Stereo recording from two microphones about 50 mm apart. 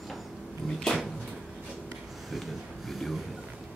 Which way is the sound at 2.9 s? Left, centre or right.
Centre.